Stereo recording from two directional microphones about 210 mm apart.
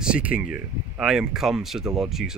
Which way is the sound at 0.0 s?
5° right (ahead or behind).